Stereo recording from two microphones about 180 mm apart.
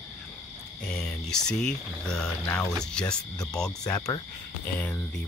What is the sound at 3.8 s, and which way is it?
Speech, 20° left (ahead or behind).